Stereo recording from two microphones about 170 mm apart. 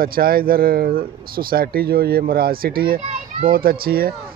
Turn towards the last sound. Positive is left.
turn(degrees=-60)  # may be behind; listen again after turning